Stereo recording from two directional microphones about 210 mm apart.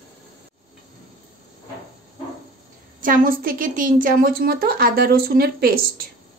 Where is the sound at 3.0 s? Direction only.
40° right (ahead or behind).